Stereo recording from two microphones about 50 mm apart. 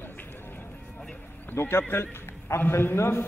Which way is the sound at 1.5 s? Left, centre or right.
Left.